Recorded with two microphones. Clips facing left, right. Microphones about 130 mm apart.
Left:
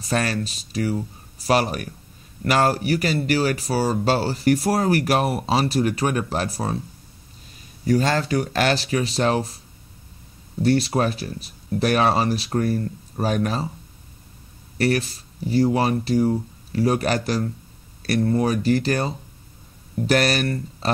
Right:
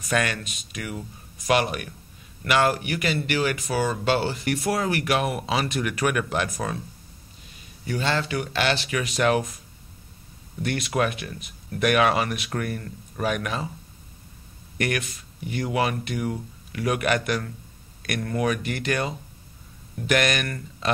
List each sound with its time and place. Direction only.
0.0 s speech: 35° left (ahead or behind)
7.8 s speech: 40° left (ahead or behind)
10.6 s speech: 35° left (ahead or behind)
14.8 s speech: 35° left (ahead or behind)